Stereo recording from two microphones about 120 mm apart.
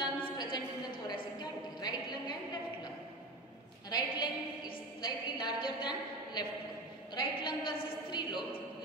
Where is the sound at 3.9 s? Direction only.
40° left (ahead or behind).